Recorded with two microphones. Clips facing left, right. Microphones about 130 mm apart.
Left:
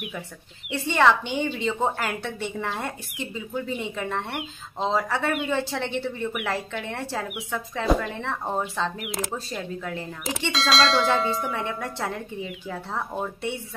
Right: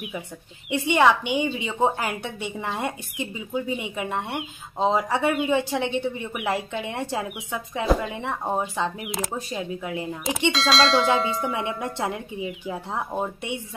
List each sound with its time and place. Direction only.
0.7 s a woman's voice: 15° right (ahead or behind)
10.5 s bell: centre (ahead or behind)
11.4 s a woman's voice: 15° right (ahead or behind)